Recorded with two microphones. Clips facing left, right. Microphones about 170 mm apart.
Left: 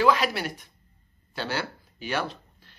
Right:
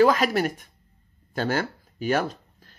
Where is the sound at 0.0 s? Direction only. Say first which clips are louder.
Right 4 dB; 45° right (ahead or behind).